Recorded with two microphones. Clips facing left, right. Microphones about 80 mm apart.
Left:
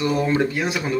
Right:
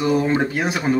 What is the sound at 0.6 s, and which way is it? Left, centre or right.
Speech, right.